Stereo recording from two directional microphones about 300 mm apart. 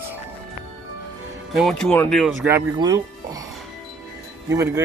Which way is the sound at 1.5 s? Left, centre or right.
Centre.